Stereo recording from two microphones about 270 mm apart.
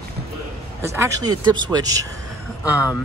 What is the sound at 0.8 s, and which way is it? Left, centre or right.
Speech, centre.